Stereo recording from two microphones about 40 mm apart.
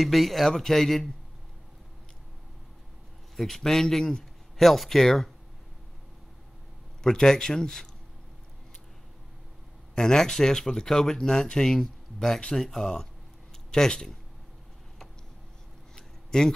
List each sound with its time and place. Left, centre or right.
0.0 s a man's voice: centre
3.3 s speech: centre
7.0 s speech: centre
9.9 s speech: centre
16.0 s a sound: centre